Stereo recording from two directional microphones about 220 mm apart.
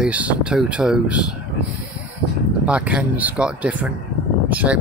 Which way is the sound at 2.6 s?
5° right (ahead or behind).